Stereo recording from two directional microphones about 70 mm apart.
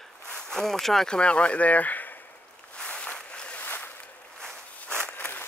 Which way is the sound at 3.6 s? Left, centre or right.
Left.